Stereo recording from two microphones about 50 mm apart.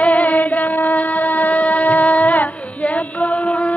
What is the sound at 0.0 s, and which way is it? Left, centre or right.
Mantra, left.